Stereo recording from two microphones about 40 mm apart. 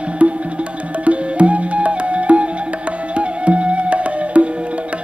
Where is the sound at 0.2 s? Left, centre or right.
Right.